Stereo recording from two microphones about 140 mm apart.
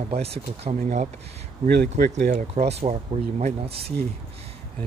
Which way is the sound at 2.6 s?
50° right (ahead or behind).